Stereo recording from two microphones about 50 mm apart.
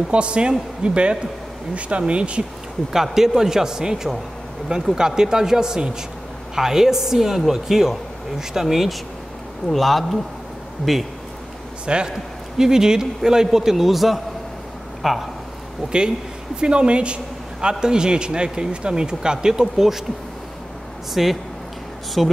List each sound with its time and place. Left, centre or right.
0.1 s speech: right
2.9 s a man's voice: centre
11.8 s a man's voice: centre
16.5 s a man's voice: centre
21.1 s speech: centre